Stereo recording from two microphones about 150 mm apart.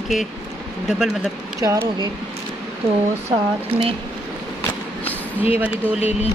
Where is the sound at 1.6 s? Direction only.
25° right (ahead or behind).